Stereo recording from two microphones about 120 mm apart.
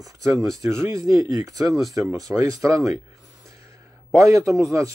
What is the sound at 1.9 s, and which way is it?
Speech, 30° right (ahead or behind).